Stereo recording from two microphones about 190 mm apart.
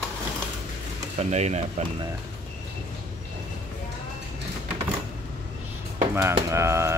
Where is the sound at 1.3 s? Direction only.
35° right (ahead or behind).